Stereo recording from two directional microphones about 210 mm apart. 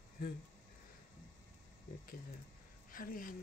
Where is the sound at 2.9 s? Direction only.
45° left (ahead or behind).